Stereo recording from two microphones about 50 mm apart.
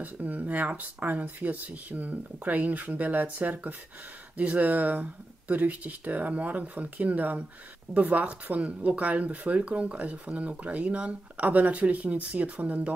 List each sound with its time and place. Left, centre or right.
0.0 s speech: right